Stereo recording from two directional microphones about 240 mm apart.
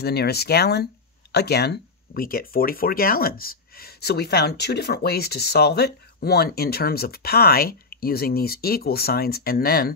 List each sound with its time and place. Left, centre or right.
0.0 s speech: left